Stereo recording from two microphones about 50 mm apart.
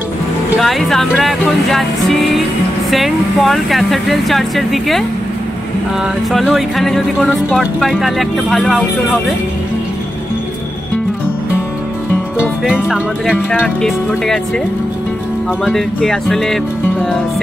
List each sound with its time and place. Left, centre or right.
0.6 s speech: centre
8.0 s speech: centre
12.6 s music: centre
13.7 s speech: centre
15.7 s speech: centre